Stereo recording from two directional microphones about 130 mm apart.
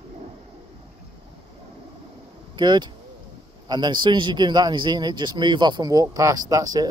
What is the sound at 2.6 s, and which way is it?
Speech, 35° right (ahead or behind).